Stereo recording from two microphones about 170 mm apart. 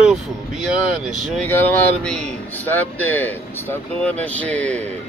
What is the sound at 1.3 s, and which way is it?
Speech, 10° left (ahead or behind).